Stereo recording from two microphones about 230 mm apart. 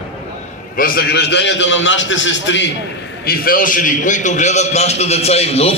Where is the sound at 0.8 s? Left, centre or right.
Left.